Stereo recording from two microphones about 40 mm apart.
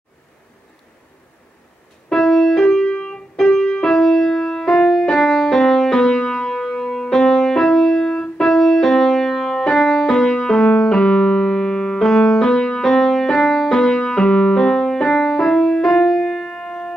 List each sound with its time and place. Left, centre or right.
2.0 s music: centre
10.1 s piano: centre